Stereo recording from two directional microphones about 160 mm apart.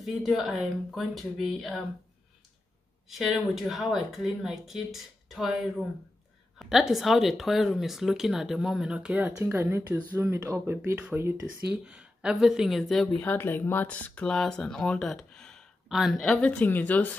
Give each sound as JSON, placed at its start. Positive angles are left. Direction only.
{"t": 0.0, "sound": "speech", "side_deg": 0}
{"t": 3.1, "sound": "speech", "side_deg": 0}
{"t": 6.6, "sound": "speech", "side_deg": 0}
{"t": 13.2, "sound": "speech", "side_deg": 10}